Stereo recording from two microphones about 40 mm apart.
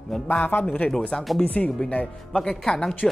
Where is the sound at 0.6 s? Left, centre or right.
Left.